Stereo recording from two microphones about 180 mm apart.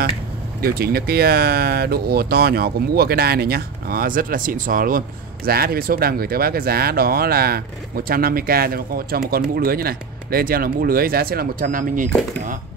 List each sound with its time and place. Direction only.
0.6 s speech: 55° right (ahead or behind)